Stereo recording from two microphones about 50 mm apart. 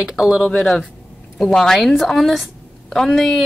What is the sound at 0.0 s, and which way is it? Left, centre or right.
Speech, centre.